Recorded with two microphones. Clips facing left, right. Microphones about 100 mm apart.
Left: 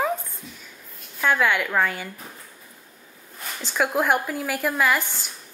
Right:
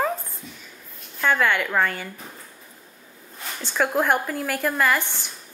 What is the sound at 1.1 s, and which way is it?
Speech, 5° left (ahead or behind).